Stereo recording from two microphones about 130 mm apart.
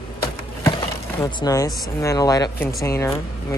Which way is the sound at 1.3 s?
30° left (ahead or behind).